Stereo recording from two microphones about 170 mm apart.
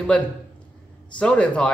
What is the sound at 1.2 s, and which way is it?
Speech, 5° left (ahead or behind).